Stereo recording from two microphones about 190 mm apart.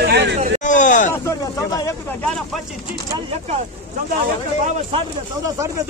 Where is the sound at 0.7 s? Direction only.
40° left (ahead or behind).